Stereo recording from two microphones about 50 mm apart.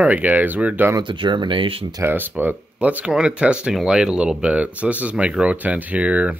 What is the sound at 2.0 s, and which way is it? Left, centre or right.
Speech, right.